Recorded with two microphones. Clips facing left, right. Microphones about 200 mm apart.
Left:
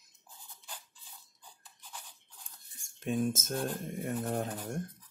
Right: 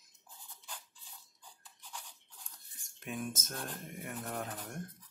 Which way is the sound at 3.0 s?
30° left (ahead or behind).